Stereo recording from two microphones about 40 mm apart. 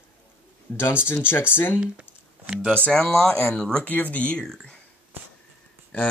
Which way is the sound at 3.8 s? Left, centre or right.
Left.